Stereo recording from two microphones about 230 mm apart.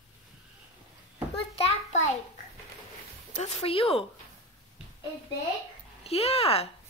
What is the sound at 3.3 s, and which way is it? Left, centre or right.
Speech, left.